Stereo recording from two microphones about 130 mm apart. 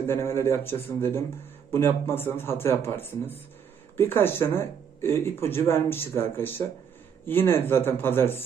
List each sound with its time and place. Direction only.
0.0 s a man's voice: 20° left (ahead or behind)